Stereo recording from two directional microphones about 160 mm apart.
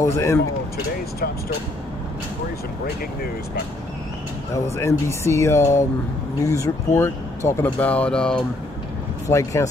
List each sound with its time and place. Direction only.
0.0 s speech: 20° left (ahead or behind)
4.6 s speech: 15° left (ahead or behind)
9.3 s speech: 20° left (ahead or behind)